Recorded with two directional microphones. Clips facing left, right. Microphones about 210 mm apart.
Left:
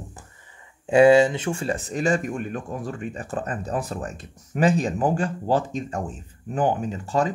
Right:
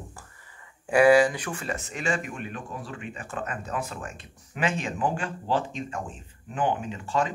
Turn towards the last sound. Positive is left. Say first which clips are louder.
# left 4 dB
turn(degrees=40)  # may be behind; listen again after turning